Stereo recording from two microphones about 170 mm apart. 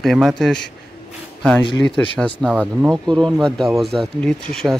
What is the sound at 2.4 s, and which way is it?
Speech, 5° right (ahead or behind).